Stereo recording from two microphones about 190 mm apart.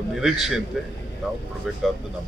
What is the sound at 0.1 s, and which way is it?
Speech, centre (ahead or behind).